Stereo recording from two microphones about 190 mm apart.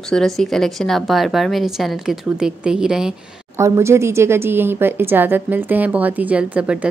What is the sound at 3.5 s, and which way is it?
A woman's voice, 15° right (ahead or behind).